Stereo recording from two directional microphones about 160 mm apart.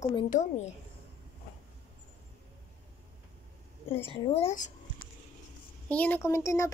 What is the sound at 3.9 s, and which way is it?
Speech, 35° left (ahead or behind).